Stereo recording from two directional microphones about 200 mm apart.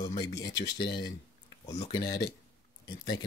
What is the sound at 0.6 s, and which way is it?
Speech, 60° left (ahead or behind).